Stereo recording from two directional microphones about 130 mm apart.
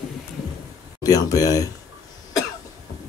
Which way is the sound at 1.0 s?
30° left (ahead or behind).